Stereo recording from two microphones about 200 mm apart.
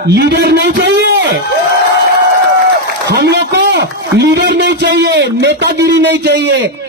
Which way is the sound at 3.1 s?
55° right (ahead or behind).